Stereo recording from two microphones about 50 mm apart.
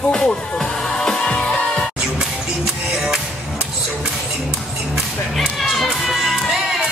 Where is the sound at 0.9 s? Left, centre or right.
Centre.